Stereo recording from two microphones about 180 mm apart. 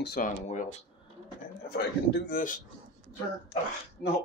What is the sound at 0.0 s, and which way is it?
Speech, 55° left (ahead or behind).